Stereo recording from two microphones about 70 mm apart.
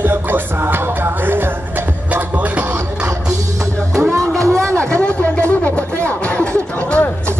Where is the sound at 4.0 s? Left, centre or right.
Right.